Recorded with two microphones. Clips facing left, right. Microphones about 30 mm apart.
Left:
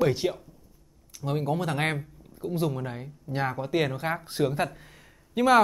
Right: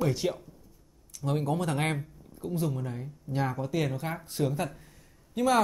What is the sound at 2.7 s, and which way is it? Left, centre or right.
Speech, left.